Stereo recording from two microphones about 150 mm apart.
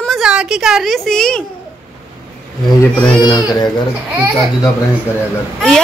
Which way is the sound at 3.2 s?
30° left (ahead or behind).